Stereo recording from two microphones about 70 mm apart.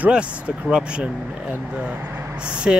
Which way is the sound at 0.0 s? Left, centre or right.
Centre.